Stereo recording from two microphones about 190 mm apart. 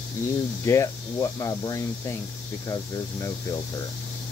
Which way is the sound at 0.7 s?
15° left (ahead or behind).